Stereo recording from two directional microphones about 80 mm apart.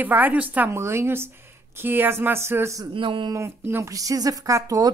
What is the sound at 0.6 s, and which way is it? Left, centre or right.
Speech, right.